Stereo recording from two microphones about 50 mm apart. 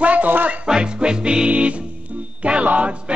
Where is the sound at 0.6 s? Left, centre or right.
Centre.